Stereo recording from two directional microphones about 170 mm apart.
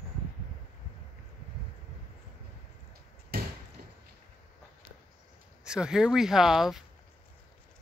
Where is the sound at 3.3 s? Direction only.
65° right (ahead or behind).